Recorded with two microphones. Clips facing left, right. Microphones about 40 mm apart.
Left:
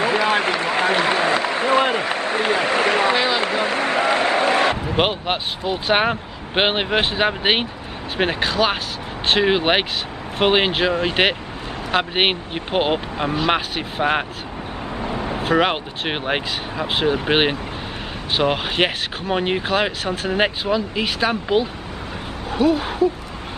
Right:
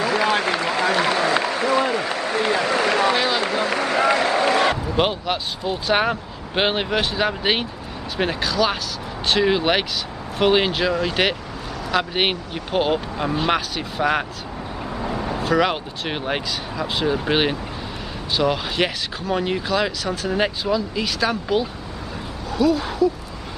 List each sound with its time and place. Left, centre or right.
0.3 s a sound: left
3.3 s a man's voice: left
15.0 s vehicle: centre
15.4 s speech: left